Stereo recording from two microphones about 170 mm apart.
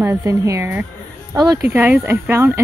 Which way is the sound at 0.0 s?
15° right (ahead or behind).